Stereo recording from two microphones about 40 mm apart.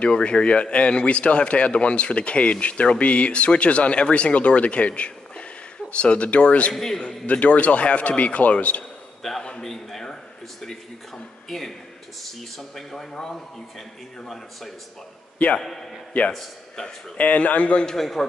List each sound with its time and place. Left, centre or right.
0.0 s speech: left
6.7 s speech: centre
7.0 s speech: left
9.2 s a sound: centre
11.4 s a man's voice: centre
16.3 s speech: centre
17.2 s speech: left
17.9 s speech: centre